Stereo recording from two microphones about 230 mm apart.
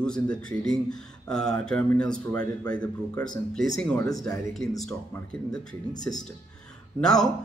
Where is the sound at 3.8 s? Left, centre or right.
Centre.